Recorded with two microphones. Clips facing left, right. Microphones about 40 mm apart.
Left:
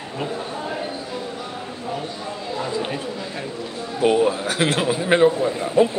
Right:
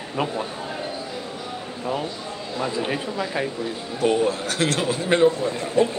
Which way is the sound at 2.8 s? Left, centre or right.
Right.